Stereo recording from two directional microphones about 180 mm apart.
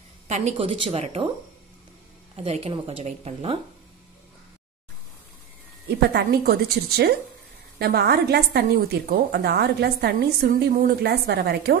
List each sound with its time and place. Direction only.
0.3 s speech: 35° right (ahead or behind)
2.3 s speech: 35° right (ahead or behind)
5.9 s a woman's voice: 65° right (ahead or behind)